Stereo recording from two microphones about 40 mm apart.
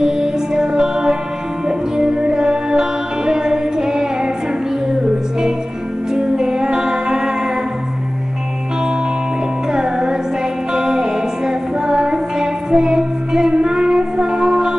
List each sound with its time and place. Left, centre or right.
0.0 s music: centre
6.1 s music: centre
9.7 s music: centre